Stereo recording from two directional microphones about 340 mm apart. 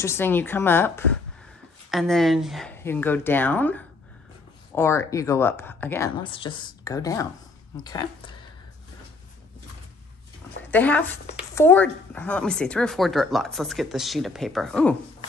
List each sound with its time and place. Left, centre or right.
0.0 s speech: centre
10.7 s speech: centre
11.2 s a sound: centre
11.6 s speech: centre